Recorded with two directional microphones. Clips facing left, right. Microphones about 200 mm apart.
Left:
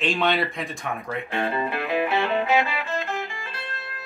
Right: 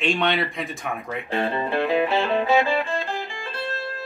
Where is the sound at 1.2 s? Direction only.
30° right (ahead or behind).